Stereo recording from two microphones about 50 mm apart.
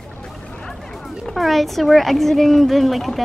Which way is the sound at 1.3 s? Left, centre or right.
Centre.